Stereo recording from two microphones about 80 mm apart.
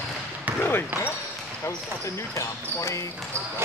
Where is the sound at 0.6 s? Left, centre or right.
Left.